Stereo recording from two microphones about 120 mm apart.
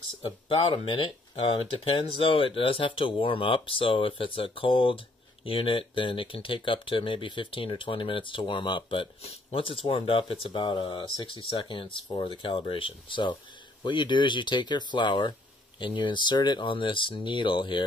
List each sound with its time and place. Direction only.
0.2 s speech: 45° left (ahead or behind)